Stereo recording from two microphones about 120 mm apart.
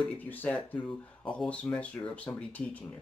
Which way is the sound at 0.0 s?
10° left (ahead or behind).